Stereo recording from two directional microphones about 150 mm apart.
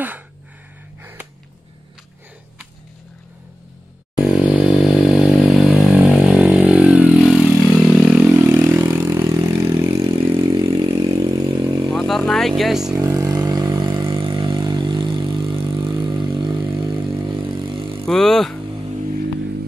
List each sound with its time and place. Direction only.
4.2 s vehicle: 5° right (ahead or behind)
4.6 s motorcycle: 5° right (ahead or behind)
7.2 s vehicle: centre (ahead or behind); by 11.9 s 25° right (ahead or behind)
11.9 s vehicle: centre (ahead or behind)
12.9 s vehicle: 20° right (ahead or behind)
18.0 s vehicle: 5° left (ahead or behind)